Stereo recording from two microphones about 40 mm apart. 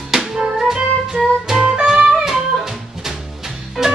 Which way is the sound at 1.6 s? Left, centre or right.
Right.